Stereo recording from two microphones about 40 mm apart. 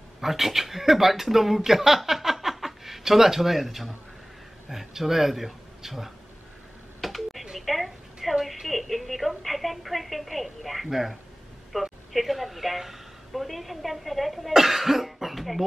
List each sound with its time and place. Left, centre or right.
0.2 s speech: centre
7.0 s a sound: centre
8.6 s a woman's voice: centre